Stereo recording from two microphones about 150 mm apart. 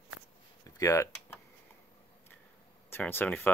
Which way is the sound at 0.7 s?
20° left (ahead or behind).